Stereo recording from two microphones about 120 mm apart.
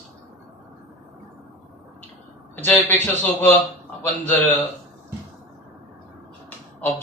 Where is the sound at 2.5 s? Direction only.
15° left (ahead or behind).